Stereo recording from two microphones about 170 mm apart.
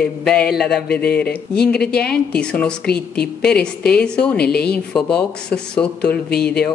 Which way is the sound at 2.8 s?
70° left (ahead or behind).